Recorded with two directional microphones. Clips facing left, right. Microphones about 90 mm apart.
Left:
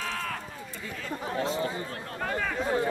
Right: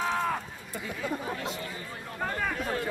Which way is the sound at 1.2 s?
25° left (ahead or behind).